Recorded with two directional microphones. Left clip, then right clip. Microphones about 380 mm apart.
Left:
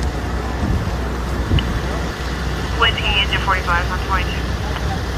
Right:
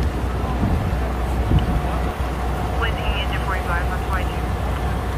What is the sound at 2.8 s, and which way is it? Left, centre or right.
Vehicle, centre.